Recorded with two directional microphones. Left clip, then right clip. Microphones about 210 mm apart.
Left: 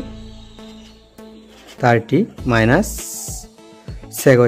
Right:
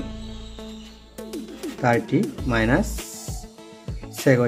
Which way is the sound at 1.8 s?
50° left (ahead or behind).